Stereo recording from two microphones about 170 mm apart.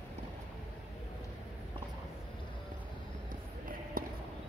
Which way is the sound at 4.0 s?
60° right (ahead or behind).